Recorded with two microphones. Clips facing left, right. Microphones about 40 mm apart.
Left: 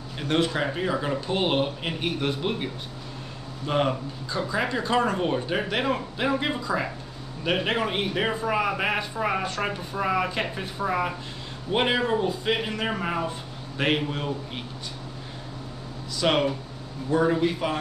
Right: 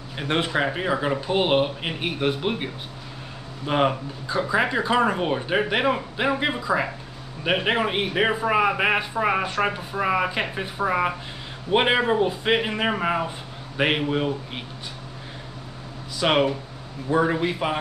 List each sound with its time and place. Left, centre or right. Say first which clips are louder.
0.2 s a man's voice: right 1 dB; right
16.2 s a man's voice: right 2 dB; centre